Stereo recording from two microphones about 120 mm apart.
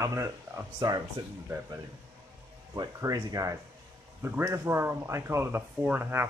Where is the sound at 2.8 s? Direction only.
25° right (ahead or behind).